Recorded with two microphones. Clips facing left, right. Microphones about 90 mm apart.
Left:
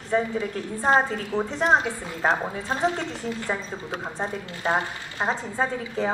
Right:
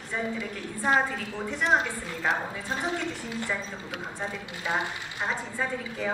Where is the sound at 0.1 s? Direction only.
35° left (ahead or behind).